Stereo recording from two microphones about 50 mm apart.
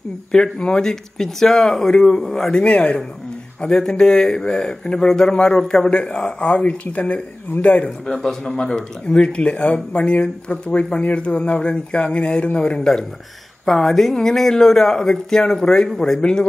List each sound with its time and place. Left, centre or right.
0.3 s speech: centre
2.6 s speech: left
5.9 s speech: left
8.1 s speech: centre